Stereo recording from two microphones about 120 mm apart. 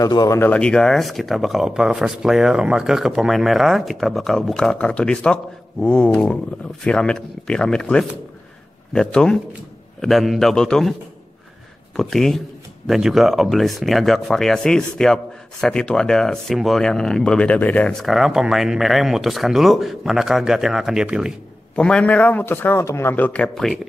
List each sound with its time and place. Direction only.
0.0 s speech: 30° left (ahead or behind)
0.4 s a man's voice: 10° left (ahead or behind)
12.0 s speech: 5° left (ahead or behind)
18.0 s speech: centre (ahead or behind)
21.7 s a man's voice: 10° left (ahead or behind)